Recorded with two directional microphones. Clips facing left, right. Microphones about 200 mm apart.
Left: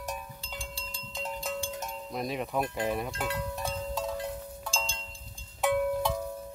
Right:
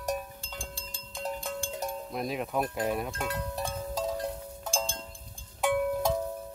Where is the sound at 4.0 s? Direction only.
40° right (ahead or behind).